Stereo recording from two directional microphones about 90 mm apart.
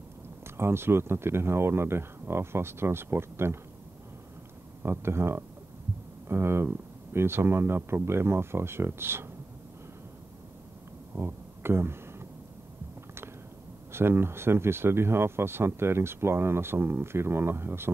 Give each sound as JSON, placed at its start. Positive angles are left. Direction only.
{"t": 0.6, "sound": "speech", "side_deg": -25}
{"t": 4.8, "sound": "speech", "side_deg": -30}
{"t": 11.1, "sound": "a sound", "side_deg": -25}
{"t": 13.9, "sound": "speech", "side_deg": -25}